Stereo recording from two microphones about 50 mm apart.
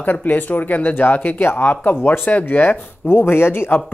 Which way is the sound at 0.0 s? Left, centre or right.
Left.